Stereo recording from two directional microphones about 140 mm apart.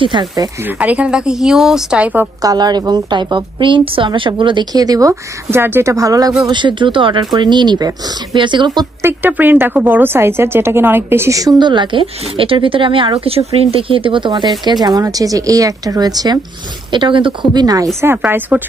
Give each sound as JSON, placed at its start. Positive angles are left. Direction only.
{"t": 0.0, "sound": "speech", "side_deg": -35}
{"t": 0.7, "sound": "speech", "side_deg": -10}
{"t": 2.4, "sound": "a woman's voice", "side_deg": -30}
{"t": 9.0, "sound": "a woman's voice", "side_deg": -15}
{"t": 18.0, "sound": "speech", "side_deg": -15}